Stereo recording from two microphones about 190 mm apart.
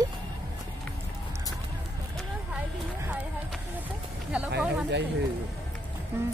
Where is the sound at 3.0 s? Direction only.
5° right (ahead or behind).